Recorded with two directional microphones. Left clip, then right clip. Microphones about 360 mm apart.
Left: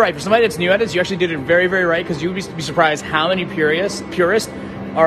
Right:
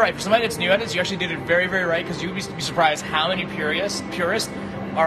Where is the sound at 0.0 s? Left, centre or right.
Left.